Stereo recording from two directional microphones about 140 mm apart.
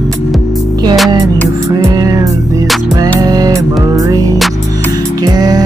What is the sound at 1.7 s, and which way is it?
Music, 25° right (ahead or behind).